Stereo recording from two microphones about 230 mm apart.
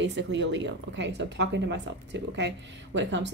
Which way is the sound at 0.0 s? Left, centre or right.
Right.